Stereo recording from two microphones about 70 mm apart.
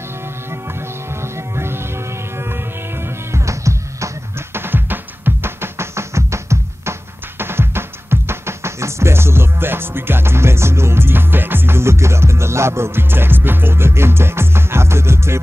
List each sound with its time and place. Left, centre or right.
0.5 s music: right
4.6 s music: right